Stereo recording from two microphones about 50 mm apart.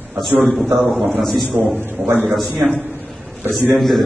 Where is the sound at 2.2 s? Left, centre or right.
Centre.